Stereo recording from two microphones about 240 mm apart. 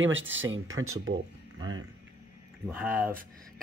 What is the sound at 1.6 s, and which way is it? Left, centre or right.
Speech, centre.